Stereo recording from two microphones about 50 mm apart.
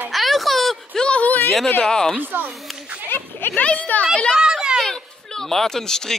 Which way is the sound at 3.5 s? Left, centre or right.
Left.